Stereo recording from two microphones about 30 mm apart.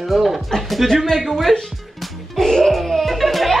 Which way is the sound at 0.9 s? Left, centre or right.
Centre.